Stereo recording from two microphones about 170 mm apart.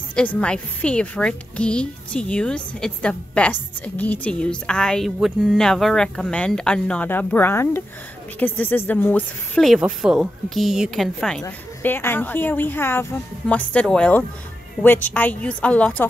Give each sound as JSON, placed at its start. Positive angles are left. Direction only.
{"t": 0.1, "sound": "a woman's voice", "side_deg": 5}